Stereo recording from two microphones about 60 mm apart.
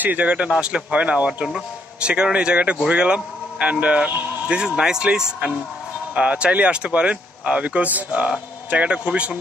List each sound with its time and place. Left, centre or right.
0.0 s speech: right